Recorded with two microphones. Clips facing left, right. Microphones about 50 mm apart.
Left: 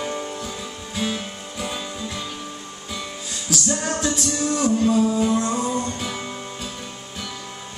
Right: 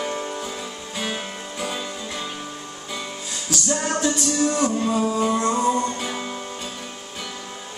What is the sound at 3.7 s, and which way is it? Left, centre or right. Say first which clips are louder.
Music: right 3 dB; centre.